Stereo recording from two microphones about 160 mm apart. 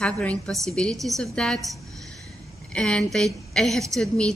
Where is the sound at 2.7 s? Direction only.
5° left (ahead or behind).